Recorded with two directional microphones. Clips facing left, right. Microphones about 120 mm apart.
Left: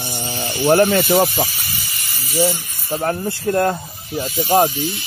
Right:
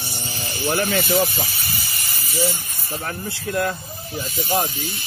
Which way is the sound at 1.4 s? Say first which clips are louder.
Even; 40° right (ahead or behind).